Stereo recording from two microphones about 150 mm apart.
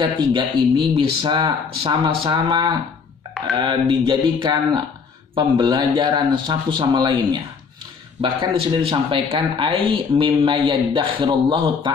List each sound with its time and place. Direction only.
0.0 s a man's voice: 30° right (ahead or behind)